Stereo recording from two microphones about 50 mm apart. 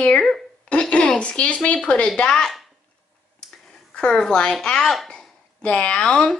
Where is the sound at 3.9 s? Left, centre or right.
Centre.